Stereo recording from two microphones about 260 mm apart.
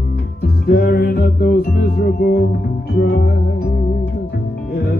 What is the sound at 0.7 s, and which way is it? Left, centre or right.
Music, left.